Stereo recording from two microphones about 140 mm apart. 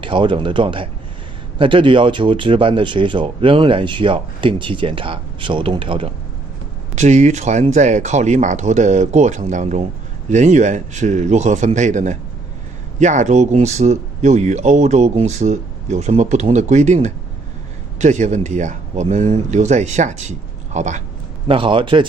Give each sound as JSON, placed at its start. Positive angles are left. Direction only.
{"t": 0.0, "sound": "speech", "side_deg": -35}
{"t": 7.0, "sound": "speech", "side_deg": -55}
{"t": 21.5, "sound": "speech", "side_deg": -35}